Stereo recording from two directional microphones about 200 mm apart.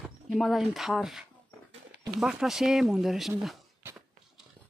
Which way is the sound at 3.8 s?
10° right (ahead or behind).